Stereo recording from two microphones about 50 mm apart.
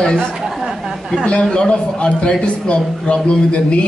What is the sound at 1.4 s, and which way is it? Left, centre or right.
A man's voice, centre.